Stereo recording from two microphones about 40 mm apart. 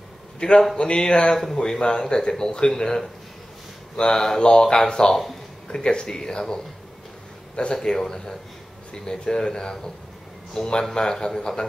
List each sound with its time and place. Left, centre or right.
0.4 s a man's voice: left
1.3 s speech: centre